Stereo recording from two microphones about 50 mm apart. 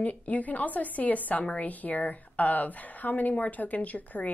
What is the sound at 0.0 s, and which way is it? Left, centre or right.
A woman's voice, left.